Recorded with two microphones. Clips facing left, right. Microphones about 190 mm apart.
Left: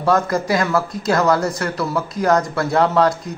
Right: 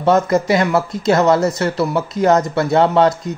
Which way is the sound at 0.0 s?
20° right (ahead or behind).